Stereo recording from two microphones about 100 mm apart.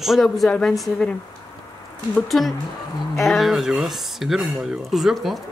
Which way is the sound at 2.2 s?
Centre (ahead or behind).